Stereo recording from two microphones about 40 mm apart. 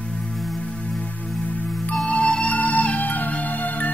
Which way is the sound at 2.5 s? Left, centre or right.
Left.